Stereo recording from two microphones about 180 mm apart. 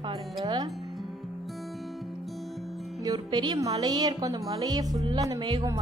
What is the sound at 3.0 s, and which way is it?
A woman's voice, 20° right (ahead or behind).